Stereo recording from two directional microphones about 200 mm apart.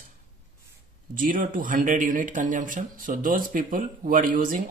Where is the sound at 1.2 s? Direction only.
45° right (ahead or behind).